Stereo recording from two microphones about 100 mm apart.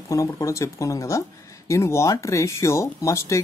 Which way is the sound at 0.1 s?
30° left (ahead or behind).